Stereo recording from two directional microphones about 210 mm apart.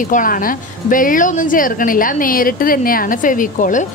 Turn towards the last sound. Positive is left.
turn(degrees=40)  # may be behind; listen again after turning